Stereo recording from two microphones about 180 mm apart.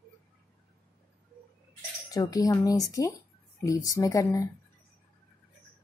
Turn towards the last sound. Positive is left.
turn(degrees=15)  # may be behind; listen again after turning